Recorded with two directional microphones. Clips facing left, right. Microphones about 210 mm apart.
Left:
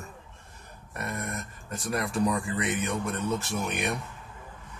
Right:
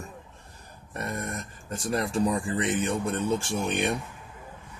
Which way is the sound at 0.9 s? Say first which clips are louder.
Right 2 dB; 30° right (ahead or behind).